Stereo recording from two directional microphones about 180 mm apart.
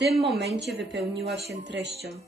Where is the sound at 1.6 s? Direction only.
80° right.